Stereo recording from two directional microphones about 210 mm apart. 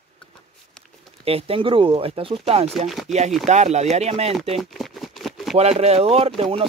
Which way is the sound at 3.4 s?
35° right (ahead or behind).